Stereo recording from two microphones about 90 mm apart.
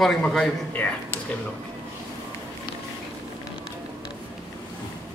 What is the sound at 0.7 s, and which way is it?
Speech, 20° left (ahead or behind).